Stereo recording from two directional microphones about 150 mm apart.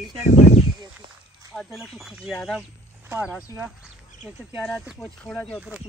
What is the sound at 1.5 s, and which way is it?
Speech, centre (ahead or behind).